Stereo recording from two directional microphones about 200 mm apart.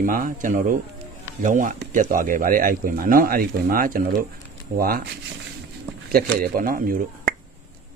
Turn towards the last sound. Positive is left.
turn(degrees=-45)  # may be behind; listen again after turning